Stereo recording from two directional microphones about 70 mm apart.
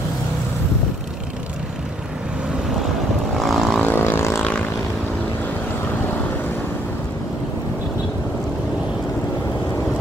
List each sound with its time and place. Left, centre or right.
3.3 s vehicle: centre
3.8 s vehicle: left